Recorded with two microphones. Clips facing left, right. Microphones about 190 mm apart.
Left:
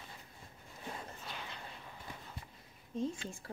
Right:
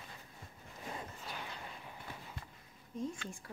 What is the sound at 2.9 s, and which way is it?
Speech, 25° left (ahead or behind).